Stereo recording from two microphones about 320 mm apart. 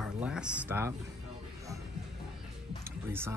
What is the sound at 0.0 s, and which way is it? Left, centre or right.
Speech, centre.